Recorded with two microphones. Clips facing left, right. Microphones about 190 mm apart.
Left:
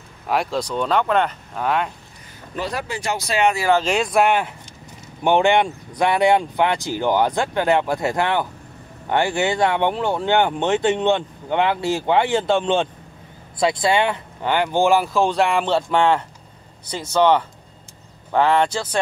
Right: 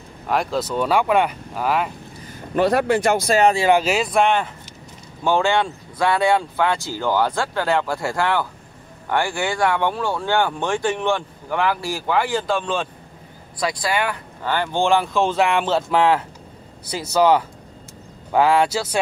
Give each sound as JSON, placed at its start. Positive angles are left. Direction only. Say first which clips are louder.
{"t": 0.3, "sound": "speech", "louder": "even", "side_deg": 0}
{"t": 2.5, "sound": "speech", "louder": "right 10 dB", "side_deg": -60}
{"t": 3.7, "sound": "speech", "louder": "even", "side_deg": -5}
{"t": 5.2, "sound": "speech", "louder": "left 3 dB", "side_deg": 20}